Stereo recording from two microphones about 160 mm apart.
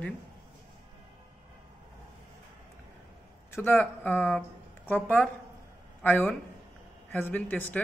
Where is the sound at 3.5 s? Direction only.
15° left (ahead or behind).